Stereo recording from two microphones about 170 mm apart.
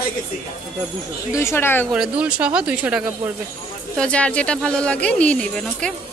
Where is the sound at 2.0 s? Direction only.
5° right (ahead or behind).